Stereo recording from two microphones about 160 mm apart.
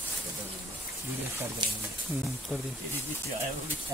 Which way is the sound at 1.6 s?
30° right (ahead or behind).